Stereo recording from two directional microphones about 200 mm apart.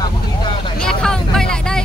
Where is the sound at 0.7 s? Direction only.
5° left (ahead or behind).